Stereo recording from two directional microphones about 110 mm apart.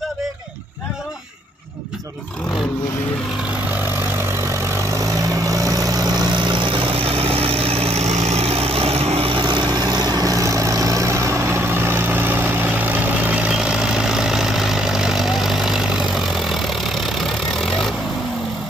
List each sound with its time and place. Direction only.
4.3 s vehicle: 25° right (ahead or behind); by 9.4 s 65° right (ahead or behind)
9.4 s vehicle: 45° right (ahead or behind); by 17.9 s centre (ahead or behind)